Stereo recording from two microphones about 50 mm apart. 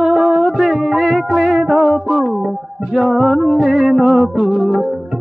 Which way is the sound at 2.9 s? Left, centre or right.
Centre.